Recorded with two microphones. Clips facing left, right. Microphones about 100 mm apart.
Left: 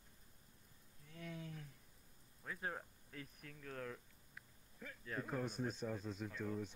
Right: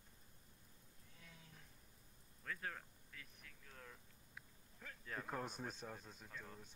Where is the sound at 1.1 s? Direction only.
75° left (ahead or behind).